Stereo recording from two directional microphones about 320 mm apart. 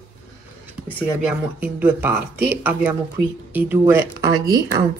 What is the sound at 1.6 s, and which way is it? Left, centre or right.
Speech, centre.